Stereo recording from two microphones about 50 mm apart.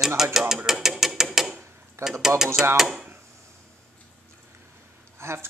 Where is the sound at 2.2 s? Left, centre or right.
Centre.